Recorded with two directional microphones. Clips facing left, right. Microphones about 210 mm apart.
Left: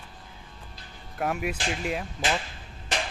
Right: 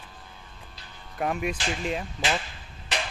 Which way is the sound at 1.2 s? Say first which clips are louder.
Right 1 dB; 5° left (ahead or behind).